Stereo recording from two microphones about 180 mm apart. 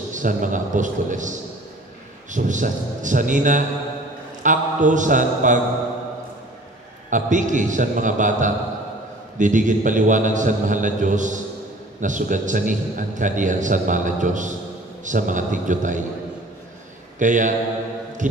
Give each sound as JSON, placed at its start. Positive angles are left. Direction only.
{"t": 0.1, "sound": "a man's voice", "side_deg": -45}
{"t": 2.3, "sound": "a man's voice", "side_deg": -45}
{"t": 7.1, "sound": "a man's voice", "side_deg": -45}
{"t": 17.2, "sound": "a man's voice", "side_deg": -45}